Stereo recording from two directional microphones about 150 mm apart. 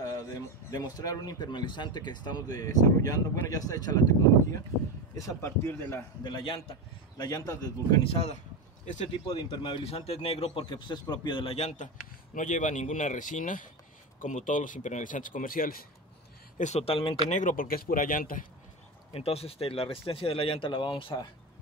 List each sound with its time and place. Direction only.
0.0 s speech: 25° left (ahead or behind)
5.1 s a man's voice: 20° left (ahead or behind)
6.2 s speech: 35° left (ahead or behind)
8.1 s speech: 45° left (ahead or behind)
8.8 s speech: 55° left (ahead or behind)
9.5 s speech: 35° left (ahead or behind); by 15.8 s 70° left (ahead or behind)
16.5 s speech: 50° left (ahead or behind)
17.3 s a man's voice: 60° left (ahead or behind)
19.1 s speech: 40° left (ahead or behind)